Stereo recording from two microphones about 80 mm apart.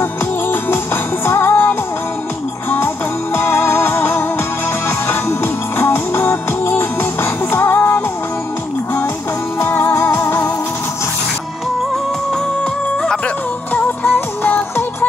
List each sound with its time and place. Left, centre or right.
0.0 s music: left
3.3 s music: left
9.6 s music: left
13.7 s music: left